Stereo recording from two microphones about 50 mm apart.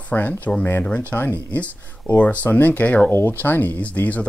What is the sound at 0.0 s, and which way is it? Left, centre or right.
Speech, left.